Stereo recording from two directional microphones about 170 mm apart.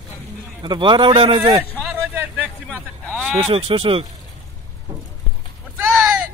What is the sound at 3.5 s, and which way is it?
Speech, 35° right (ahead or behind).